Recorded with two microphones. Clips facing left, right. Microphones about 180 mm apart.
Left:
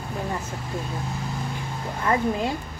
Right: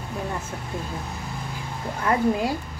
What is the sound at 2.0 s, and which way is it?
Speech, 5° right (ahead or behind).